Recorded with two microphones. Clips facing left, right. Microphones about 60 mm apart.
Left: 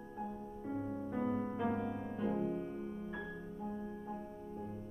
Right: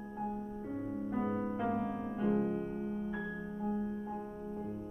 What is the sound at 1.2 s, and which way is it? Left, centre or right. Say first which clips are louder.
Music: right 1 dB; centre.